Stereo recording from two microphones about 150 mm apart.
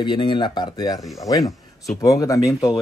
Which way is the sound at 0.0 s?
30° left (ahead or behind).